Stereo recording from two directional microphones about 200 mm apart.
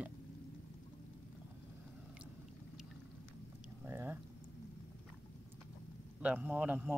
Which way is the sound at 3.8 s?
10° right (ahead or behind).